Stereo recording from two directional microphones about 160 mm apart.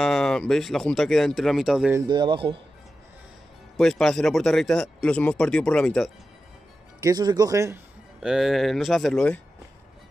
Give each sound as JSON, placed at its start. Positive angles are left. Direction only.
{"t": 0.0, "sound": "a man's voice", "side_deg": 5}
{"t": 2.0, "sound": "speech", "side_deg": -30}
{"t": 3.7, "sound": "a man's voice", "side_deg": 0}
{"t": 7.0, "sound": "speech", "side_deg": -25}
{"t": 8.2, "sound": "a man's voice", "side_deg": -5}